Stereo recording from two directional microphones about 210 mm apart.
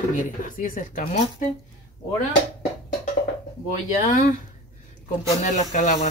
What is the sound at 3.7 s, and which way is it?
Speech, 35° left (ahead or behind).